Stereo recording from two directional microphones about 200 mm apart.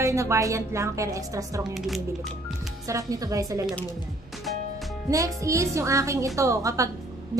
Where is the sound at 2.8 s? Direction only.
15° right (ahead or behind).